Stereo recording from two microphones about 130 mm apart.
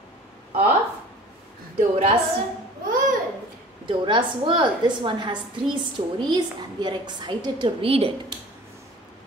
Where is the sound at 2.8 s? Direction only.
90° right.